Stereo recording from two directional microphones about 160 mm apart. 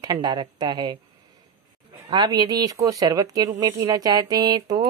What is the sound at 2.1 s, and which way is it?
Speech, 25° right (ahead or behind).